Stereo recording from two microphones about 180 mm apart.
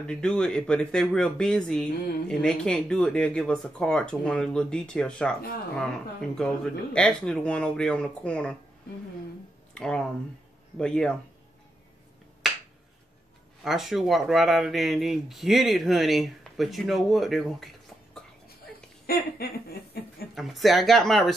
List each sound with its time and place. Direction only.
0.0 s speech: 5° left (ahead or behind)
6.3 s speech: 5° left (ahead or behind)
9.8 s speech: 5° left (ahead or behind)
13.7 s speech: centre (ahead or behind)
19.0 s chuckle: 55° left (ahead or behind)
20.3 s speech: centre (ahead or behind)